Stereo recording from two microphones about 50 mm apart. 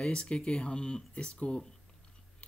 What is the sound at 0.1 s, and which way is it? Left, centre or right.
Speech, centre.